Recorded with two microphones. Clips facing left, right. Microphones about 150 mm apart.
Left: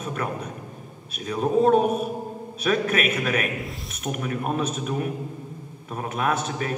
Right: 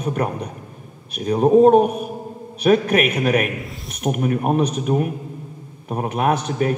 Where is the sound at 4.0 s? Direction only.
45° right (ahead or behind).